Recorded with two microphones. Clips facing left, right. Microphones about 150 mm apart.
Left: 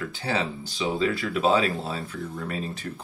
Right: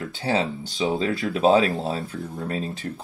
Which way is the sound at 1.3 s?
40° right (ahead or behind).